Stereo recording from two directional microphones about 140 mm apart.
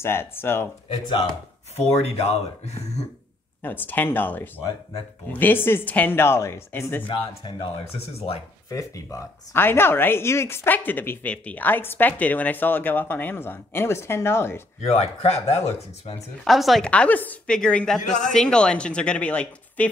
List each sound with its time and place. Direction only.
0.0 s speech: 15° left (ahead or behind)
1.8 s speech: 50° left (ahead or behind)
3.6 s speech: 15° left (ahead or behind)
7.1 s speech: 35° left (ahead or behind)
8.6 s speech: 25° left (ahead or behind)
14.9 s speech: 50° left (ahead or behind)
16.4 s speech: centre (ahead or behind)
18.0 s speech: 60° left (ahead or behind)
18.3 s speech: 5° left (ahead or behind)